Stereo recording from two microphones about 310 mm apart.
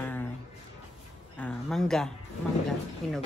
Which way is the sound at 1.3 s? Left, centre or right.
Centre.